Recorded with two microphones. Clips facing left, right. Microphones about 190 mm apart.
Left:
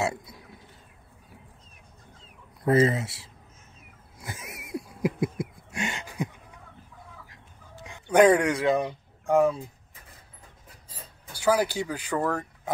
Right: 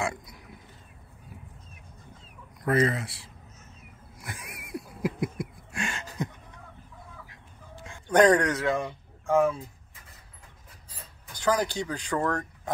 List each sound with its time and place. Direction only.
0.0 s burping: 25° left (ahead or behind)
2.6 s speech: 25° left (ahead or behind)
4.2 s a sound: 25° left (ahead or behind)
7.8 s speech: 10° left (ahead or behind)
11.3 s speech: 10° left (ahead or behind)